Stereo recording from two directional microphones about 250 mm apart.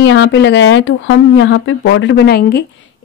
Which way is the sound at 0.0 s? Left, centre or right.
Left.